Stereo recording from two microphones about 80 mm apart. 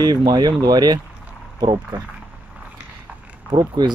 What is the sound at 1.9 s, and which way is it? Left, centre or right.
Speech, right.